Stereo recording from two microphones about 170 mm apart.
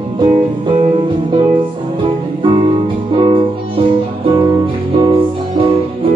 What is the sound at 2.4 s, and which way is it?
Music, 30° right (ahead or behind).